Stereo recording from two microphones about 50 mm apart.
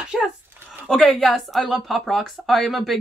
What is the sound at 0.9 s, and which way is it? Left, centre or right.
Speech, centre.